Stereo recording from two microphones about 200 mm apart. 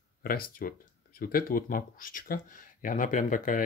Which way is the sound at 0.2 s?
50° left (ahead or behind).